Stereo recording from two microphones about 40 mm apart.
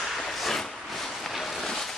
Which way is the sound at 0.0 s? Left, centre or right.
Centre.